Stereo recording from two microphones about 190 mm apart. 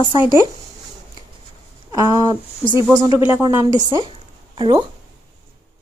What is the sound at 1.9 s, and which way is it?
Speech, 20° right (ahead or behind).